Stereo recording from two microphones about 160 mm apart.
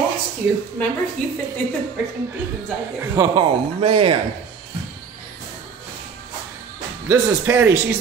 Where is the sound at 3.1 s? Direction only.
20° right (ahead or behind).